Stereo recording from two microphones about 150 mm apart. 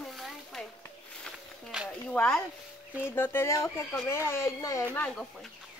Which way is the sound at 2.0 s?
5° left (ahead or behind).